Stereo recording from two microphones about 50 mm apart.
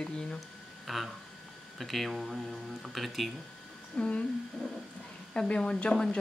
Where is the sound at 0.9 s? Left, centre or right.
Centre.